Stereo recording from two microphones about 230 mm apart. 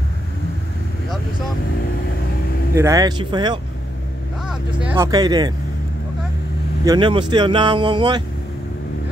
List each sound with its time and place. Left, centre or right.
2.7 s speech: centre
4.5 s speech: centre
6.8 s speech: centre